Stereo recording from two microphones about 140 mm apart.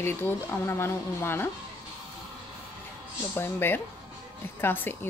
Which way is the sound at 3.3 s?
15° left (ahead or behind).